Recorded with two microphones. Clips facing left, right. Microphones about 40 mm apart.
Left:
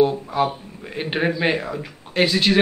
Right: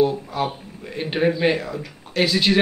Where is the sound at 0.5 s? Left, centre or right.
Centre.